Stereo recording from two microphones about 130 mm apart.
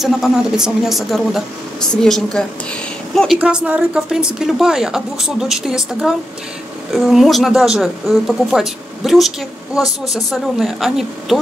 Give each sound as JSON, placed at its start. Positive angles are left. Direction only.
{"t": 0.0, "sound": "a woman's voice", "side_deg": 0}
{"t": 3.3, "sound": "a woman's voice", "side_deg": -10}